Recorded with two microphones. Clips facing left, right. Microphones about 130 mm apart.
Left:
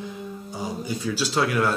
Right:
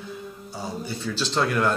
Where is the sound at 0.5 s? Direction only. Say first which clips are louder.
Left 2 dB; 15° left (ahead or behind).